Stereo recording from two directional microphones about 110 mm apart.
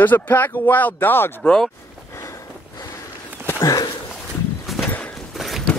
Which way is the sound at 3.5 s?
30° left (ahead or behind).